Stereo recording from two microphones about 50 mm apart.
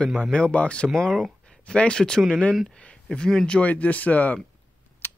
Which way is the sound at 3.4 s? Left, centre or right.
Left.